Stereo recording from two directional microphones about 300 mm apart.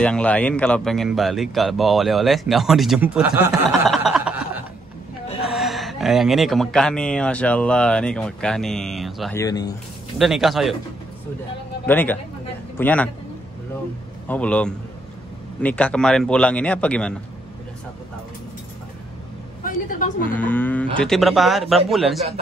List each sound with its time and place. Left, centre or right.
0.0 s speech: centre
10.1 s speech: centre
11.8 s speech: centre
14.2 s speech: centre
19.6 s a woman's voice: left
20.2 s speech: centre